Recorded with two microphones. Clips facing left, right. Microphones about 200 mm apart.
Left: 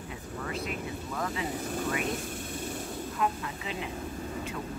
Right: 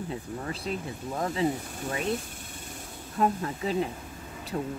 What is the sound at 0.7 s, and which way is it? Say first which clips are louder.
Speech: right 3 dB; 30° right (ahead or behind).